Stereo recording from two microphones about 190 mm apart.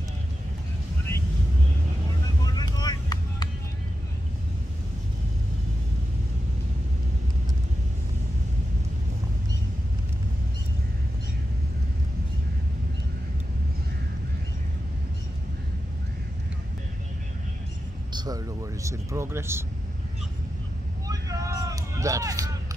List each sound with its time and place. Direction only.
2.4 s vehicle: 20° left (ahead or behind)
18.1 s speech: 20° right (ahead or behind)
21.1 s vehicle: 20° right (ahead or behind)